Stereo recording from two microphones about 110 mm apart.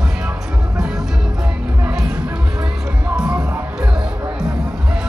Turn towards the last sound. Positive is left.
turn(degrees=-15)  # may be behind; listen again after turning